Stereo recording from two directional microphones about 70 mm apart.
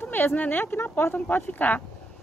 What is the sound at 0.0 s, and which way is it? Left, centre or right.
A woman's voice, left.